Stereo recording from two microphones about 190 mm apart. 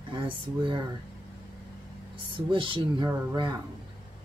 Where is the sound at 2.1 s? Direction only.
25° right (ahead or behind).